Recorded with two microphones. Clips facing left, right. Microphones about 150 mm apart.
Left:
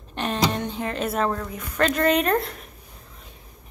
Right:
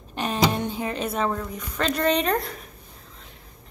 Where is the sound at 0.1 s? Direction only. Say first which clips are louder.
Right 1 dB; 5° right (ahead or behind).